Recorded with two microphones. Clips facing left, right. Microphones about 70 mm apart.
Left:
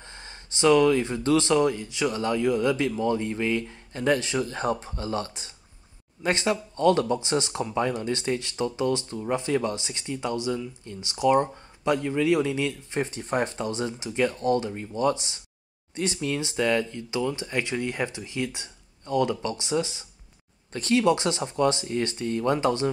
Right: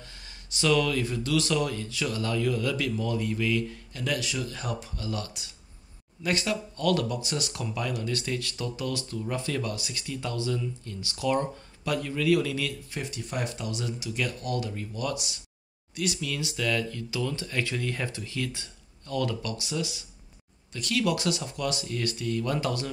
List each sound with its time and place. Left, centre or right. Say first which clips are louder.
0.0 s speech: left 4 dB; left